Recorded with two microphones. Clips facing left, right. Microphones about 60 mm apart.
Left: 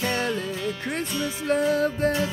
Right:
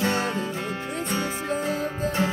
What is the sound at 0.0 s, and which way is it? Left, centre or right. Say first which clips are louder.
Music: right 1 dB; right.